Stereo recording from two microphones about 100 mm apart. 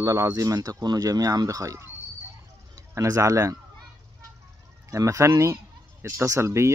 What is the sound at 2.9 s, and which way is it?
Speech, 30° right (ahead or behind).